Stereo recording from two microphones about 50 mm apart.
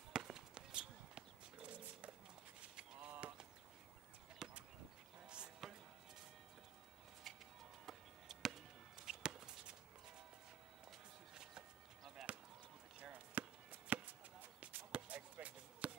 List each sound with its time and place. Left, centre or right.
0.1 s basketball bounce: centre
2.6 s a sound: right
3.1 s a sound: right
4.4 s a sound: centre
7.3 s music: centre
7.8 s chop: centre
12.2 s basketball bounce: centre
13.0 s chop: right
14.6 s basketball bounce: right